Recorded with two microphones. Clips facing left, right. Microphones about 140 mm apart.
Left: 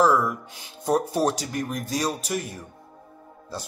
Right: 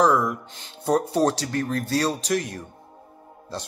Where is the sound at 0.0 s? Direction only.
5° left (ahead or behind).